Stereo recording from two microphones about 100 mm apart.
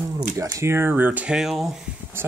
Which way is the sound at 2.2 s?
25° right (ahead or behind).